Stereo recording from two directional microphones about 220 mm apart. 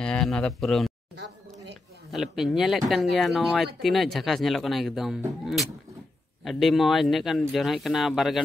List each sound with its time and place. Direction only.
0.0 s speech: 5° left (ahead or behind)
1.1 s a sound: 50° right (ahead or behind)
2.0 s speech: centre (ahead or behind)